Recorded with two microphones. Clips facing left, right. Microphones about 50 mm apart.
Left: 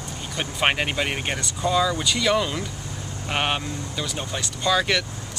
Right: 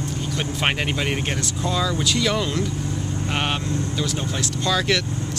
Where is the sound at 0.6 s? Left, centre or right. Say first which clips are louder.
Left 2 dB; centre.